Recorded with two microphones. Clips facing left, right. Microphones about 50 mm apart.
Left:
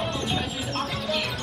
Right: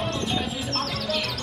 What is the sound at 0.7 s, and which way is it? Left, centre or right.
Music, centre.